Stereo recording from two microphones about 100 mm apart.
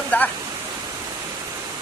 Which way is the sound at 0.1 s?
15° left (ahead or behind).